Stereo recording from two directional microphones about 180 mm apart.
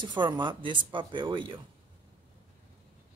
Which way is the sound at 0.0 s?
25° right (ahead or behind).